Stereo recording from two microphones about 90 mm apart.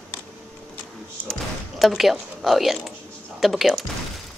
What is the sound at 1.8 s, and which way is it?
A woman's voice, centre (ahead or behind).